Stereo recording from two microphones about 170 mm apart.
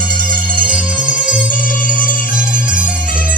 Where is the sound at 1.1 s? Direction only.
50° left (ahead or behind).